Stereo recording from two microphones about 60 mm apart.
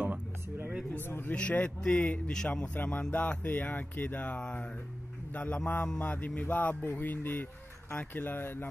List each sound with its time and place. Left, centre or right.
0.1 s a sound: right
1.0 s speech: left
1.3 s speech: centre
4.4 s speech: centre
5.3 s a man's voice: left